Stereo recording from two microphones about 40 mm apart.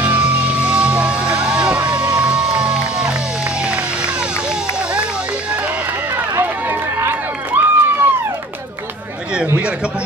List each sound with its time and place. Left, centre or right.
0.0 s music: right
3.6 s run: right
6.4 s run: right
9.3 s chatter: right